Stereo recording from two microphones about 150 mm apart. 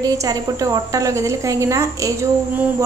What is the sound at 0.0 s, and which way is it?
A woman's voice, 25° right (ahead or behind).